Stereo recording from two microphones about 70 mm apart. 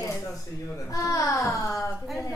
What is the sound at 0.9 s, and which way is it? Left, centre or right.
Speech, left.